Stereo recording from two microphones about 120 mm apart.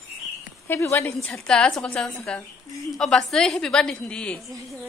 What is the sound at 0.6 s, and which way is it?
A woman's voice, 15° left (ahead or behind).